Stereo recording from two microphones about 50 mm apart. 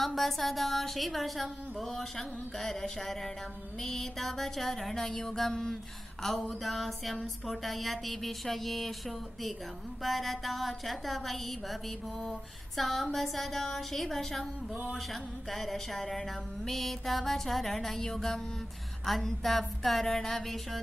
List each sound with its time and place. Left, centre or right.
0.0 s a woman's voice: centre
3.8 s music: centre
6.6 s a woman's voice: centre
10.0 s a woman's voice: centre
15.5 s a woman's voice: centre